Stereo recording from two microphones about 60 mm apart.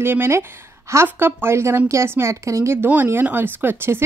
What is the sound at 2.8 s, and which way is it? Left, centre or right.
Speech, right.